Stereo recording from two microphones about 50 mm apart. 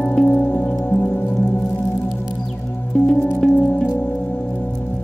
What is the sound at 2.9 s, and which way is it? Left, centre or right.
Music, left.